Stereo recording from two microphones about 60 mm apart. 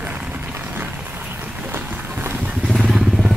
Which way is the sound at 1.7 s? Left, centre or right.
Right.